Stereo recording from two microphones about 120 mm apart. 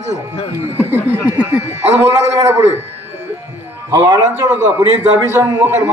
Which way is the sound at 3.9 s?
30° right (ahead or behind).